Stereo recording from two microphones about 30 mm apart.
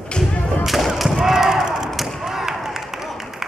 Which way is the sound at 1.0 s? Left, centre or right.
Centre.